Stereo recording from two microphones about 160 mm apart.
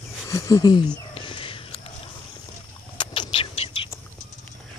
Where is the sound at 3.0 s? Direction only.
30° left (ahead or behind).